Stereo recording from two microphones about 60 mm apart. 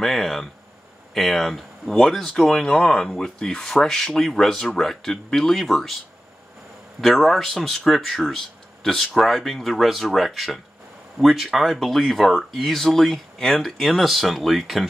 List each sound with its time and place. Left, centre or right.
0.0 s a sound: centre
1.1 s speech: centre
7.0 s speech: centre